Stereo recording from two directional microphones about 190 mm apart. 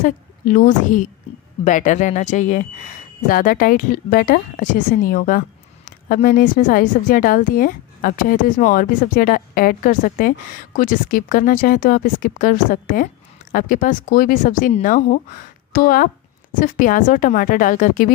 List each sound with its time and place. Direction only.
0.0 s a woman's voice: 45° left (ahead or behind)